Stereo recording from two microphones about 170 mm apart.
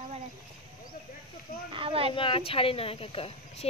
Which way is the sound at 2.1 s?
30° left (ahead or behind).